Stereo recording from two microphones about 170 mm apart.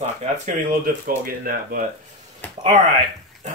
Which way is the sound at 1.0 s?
60° right (ahead or behind).